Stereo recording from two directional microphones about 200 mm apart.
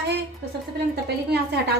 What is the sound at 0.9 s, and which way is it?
Speech, 55° right (ahead or behind).